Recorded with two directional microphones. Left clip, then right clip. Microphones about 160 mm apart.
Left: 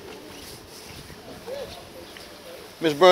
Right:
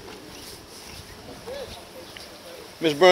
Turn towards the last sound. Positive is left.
turn(degrees=-5)  # may be behind; listen again after turning